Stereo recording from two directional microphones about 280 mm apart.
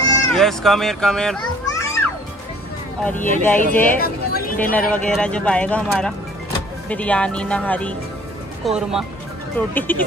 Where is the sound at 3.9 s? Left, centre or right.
Left.